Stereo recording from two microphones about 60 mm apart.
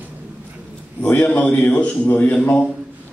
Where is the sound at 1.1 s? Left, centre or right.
Left.